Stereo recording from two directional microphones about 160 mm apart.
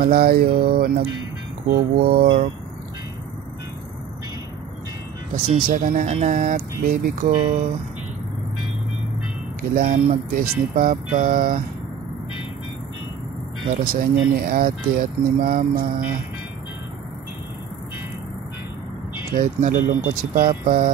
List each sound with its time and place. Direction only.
0.0 s speech: 75° right (ahead or behind)
5.3 s speech: 65° right (ahead or behind); by 7.6 s 50° right (ahead or behind)
9.8 s speech: 50° right (ahead or behind)
13.8 s speech: 60° right (ahead or behind)
19.3 s speech: 55° right (ahead or behind)